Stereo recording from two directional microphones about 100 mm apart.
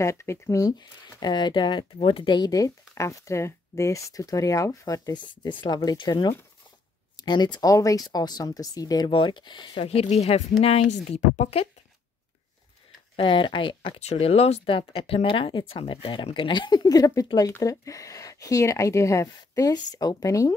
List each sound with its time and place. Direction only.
0.0 s speech: 30° left (ahead or behind)
9.1 s speech: 55° left (ahead or behind)
9.8 s speech: 90° left
13.1 s speech: 60° left (ahead or behind); by 20.5 s 35° left (ahead or behind)